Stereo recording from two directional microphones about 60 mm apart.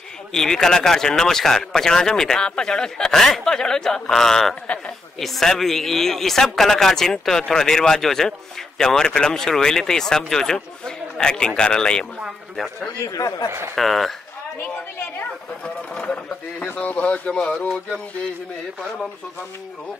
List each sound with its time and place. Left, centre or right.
0.3 s speech: centre
13.0 s speech: left
13.7 s speech: centre
15.9 s speech: centre
16.5 s speech: left